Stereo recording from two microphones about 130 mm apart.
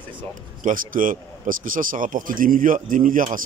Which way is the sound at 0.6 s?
90° right.